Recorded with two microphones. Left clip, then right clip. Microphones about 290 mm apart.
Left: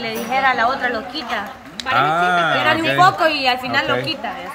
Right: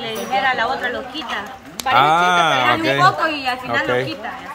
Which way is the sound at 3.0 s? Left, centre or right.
Left.